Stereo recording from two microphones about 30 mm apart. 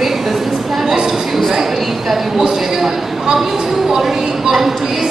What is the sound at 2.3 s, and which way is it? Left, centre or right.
Speech, centre.